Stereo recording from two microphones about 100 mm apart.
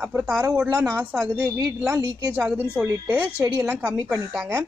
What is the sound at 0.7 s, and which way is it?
Speech, 25° right (ahead or behind).